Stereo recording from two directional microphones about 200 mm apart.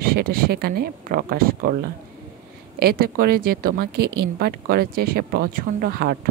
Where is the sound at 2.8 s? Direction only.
45° right (ahead or behind).